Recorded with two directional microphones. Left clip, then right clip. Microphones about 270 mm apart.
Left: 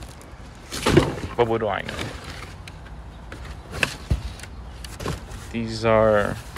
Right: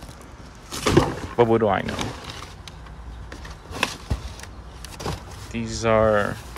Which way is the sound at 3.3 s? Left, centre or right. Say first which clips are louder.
Even; right.